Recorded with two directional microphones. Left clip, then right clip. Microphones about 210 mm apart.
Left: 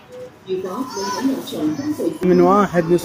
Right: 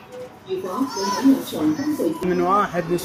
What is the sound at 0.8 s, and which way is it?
Speech, 55° right (ahead or behind).